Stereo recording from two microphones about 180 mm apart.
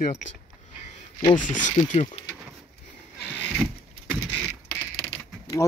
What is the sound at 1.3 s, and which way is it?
Speech, 45° left (ahead or behind).